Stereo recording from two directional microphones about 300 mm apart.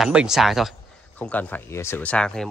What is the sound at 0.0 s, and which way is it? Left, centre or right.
Speech, centre.